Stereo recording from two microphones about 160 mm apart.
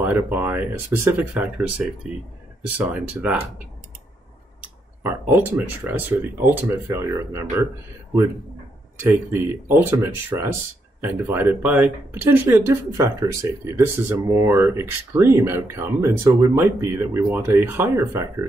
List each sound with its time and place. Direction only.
0.0 s speech: 10° right (ahead or behind)
5.0 s speech: 10° right (ahead or behind)
9.0 s speech: 10° right (ahead or behind)